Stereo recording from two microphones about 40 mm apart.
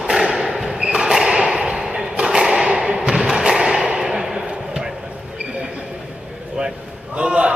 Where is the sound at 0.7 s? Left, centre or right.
Centre.